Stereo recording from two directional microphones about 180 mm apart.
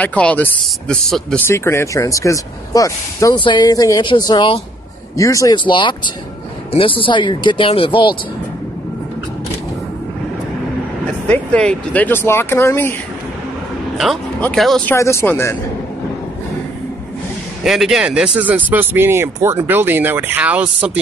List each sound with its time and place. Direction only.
0.0 s speech: 10° left (ahead or behind); by 8.2 s 25° left (ahead or behind)
11.2 s speech: 5° left (ahead or behind)
14.4 s speech: centre (ahead or behind)
14.9 s speech: 15° left (ahead or behind)
17.6 s speech: centre (ahead or behind)